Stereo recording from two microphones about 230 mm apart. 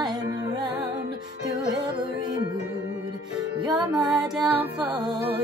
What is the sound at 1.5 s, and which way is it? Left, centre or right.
Music, centre.